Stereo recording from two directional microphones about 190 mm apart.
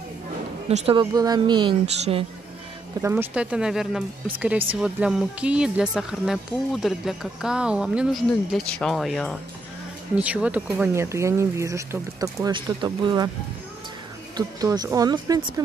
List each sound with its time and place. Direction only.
0.7 s speech: 30° right (ahead or behind)
3.0 s speech: 10° right (ahead or behind)
14.3 s speech: 20° right (ahead or behind)